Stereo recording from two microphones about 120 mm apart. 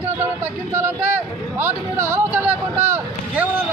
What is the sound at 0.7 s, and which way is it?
Speech, 15° right (ahead or behind).